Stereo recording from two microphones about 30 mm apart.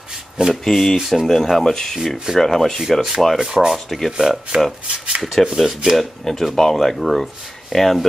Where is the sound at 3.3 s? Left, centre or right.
Right.